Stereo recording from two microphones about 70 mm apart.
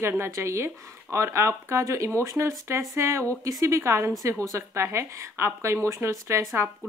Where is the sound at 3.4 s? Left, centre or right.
Right.